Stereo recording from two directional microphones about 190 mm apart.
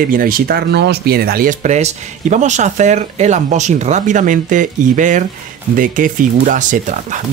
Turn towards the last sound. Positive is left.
turn(degrees=-40)  # may be behind; listen again after turning